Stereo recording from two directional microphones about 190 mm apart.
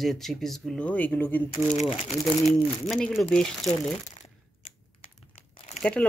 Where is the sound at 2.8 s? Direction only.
Centre (ahead or behind).